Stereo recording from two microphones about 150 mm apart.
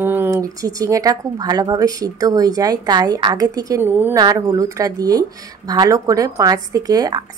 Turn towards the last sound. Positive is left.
turn(degrees=-25)  # may be behind; listen again after turning